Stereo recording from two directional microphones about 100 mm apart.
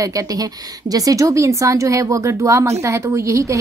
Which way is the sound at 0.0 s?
35° right (ahead or behind).